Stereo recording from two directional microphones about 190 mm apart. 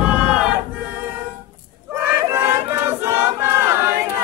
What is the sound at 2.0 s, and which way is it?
Choir, 15° right (ahead or behind).